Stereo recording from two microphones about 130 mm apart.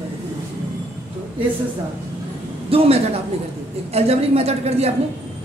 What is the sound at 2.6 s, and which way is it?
A woman's voice, 50° right (ahead or behind).